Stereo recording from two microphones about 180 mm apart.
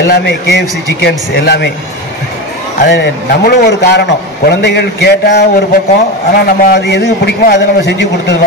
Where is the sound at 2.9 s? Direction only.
70° left (ahead or behind).